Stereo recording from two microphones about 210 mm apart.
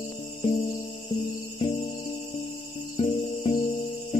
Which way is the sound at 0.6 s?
25° left (ahead or behind).